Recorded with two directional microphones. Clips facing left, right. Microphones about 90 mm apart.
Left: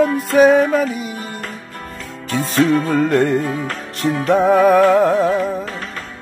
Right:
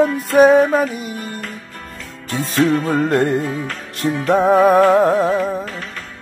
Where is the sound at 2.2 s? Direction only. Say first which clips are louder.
Left 2 dB; 50° left (ahead or behind).